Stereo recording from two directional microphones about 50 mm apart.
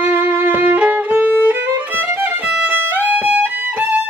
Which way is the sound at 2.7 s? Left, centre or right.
Right.